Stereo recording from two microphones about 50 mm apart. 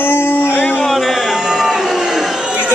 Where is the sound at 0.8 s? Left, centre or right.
Centre.